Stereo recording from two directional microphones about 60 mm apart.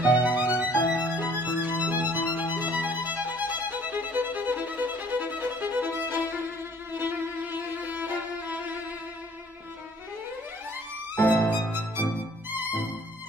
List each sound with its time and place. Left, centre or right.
0.0 s music: right
6.9 s violin: right
11.1 s music: left